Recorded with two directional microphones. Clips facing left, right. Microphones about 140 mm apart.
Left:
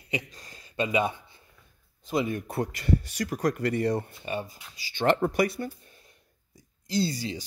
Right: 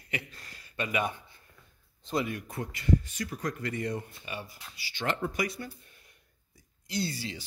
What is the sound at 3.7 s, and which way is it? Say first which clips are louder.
Speech: left 7 dB; 35° left (ahead or behind).